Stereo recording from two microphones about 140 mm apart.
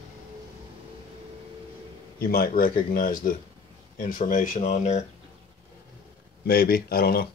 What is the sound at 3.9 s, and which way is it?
Speech, 70° left (ahead or behind).